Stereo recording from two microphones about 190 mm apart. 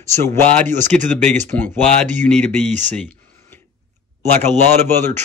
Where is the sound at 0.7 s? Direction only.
40° right (ahead or behind).